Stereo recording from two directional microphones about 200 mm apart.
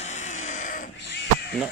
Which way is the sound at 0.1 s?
35° left (ahead or behind).